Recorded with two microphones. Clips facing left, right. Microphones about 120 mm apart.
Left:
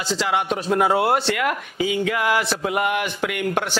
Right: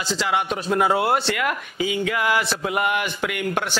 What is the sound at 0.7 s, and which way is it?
Speech, 45° left (ahead or behind).